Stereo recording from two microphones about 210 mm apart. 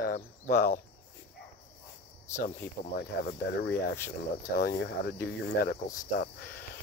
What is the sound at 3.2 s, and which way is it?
Speech, 45° left (ahead or behind).